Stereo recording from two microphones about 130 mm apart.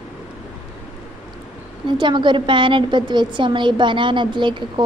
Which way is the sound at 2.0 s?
35° right (ahead or behind).